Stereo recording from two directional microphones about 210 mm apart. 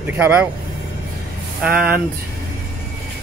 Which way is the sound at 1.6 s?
5° right (ahead or behind).